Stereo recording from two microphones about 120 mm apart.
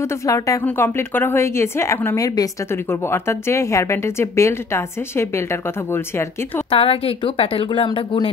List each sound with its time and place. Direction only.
0.0 s speech: 25° left (ahead or behind)
6.7 s speech: 50° left (ahead or behind)